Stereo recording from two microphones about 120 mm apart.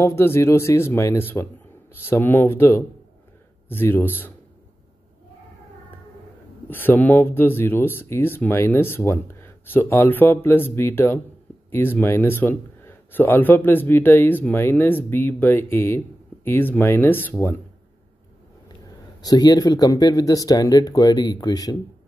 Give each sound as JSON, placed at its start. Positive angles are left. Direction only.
{"t": 0.0, "sound": "speech", "side_deg": 20}
{"t": 6.7, "sound": "speech", "side_deg": 15}
{"t": 19.2, "sound": "speech", "side_deg": 35}